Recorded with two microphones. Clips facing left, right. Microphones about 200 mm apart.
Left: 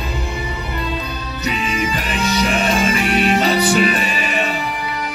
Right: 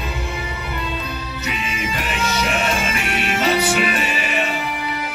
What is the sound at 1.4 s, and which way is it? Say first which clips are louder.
Music: left 7 dB; 35° left (ahead or behind).